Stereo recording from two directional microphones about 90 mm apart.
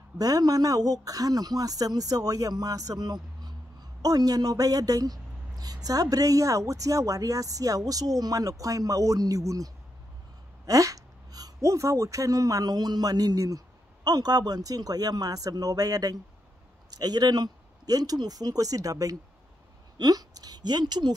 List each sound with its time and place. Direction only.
0.2 s speech: 45° right (ahead or behind)